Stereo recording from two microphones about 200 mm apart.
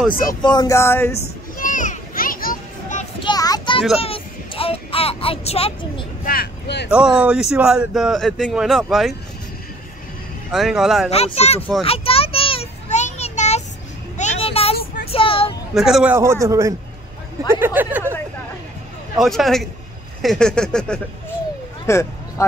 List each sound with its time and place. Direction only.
0.1 s speech: 45° left (ahead or behind)
0.4 s speech: 20° left (ahead or behind)
1.2 s children playing: 40° left (ahead or behind)
3.2 s child singing: 20° left (ahead or behind)
4.0 s speech: 30° left (ahead or behind)
6.2 s speech: 50° left (ahead or behind)
6.9 s speech: 5° right (ahead or behind)
10.5 s speech: centre (ahead or behind)
11.1 s speech: 30° left (ahead or behind)
11.8 s a sound: 30° left (ahead or behind)
15.0 s child singing: 25° left (ahead or behind)
15.7 s a man's voice: centre (ahead or behind)
19.1 s speech: centre (ahead or behind)